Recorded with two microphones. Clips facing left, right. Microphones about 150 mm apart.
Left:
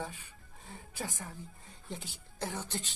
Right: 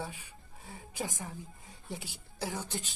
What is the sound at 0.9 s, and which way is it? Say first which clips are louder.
Speech: right 3 dB; 15° right (ahead or behind).